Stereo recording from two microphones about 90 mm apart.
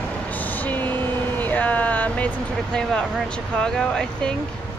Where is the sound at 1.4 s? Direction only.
15° left (ahead or behind).